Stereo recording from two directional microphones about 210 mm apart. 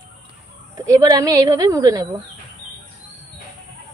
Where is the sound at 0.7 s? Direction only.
15° right (ahead or behind).